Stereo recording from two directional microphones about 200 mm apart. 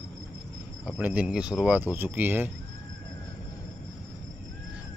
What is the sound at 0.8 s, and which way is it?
Speech, 5° right (ahead or behind).